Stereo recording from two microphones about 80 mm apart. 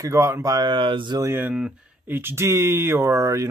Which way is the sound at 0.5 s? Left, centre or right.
Right.